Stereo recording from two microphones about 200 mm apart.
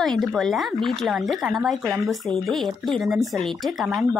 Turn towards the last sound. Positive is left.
turn(degrees=0)  # may be behind; listen again after turning